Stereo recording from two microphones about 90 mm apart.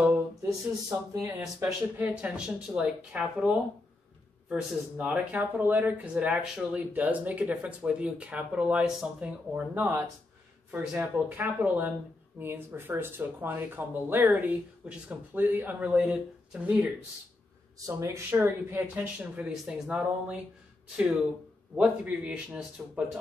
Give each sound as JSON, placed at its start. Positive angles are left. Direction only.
{"t": 0.5, "sound": "speech", "side_deg": -40}
{"t": 1.6, "sound": "speech", "side_deg": -20}
{"t": 15.9, "sound": "speech", "side_deg": -10}
{"t": 17.7, "sound": "speech", "side_deg": -35}
{"t": 18.3, "sound": "speech", "side_deg": -25}
{"t": 19.5, "sound": "speech", "side_deg": -5}
{"t": 21.7, "sound": "speech", "side_deg": -15}